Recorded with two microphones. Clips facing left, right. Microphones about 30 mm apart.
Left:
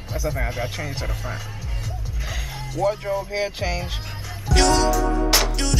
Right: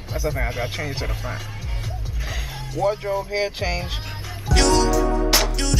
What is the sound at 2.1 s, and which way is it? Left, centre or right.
Speech, centre.